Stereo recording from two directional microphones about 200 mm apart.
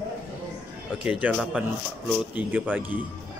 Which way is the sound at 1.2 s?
5° right (ahead or behind).